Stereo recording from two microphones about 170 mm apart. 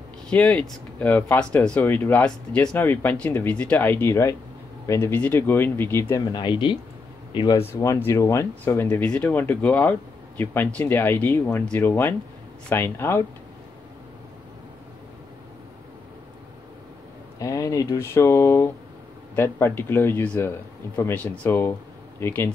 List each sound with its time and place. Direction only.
0.3 s speech: 5° left (ahead or behind); by 6.8 s 30° left (ahead or behind)
7.5 s speech: 15° left (ahead or behind)
17.4 s speech: 20° left (ahead or behind)